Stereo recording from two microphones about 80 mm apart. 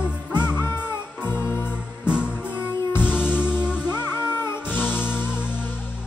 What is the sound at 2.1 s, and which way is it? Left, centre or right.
Music, centre.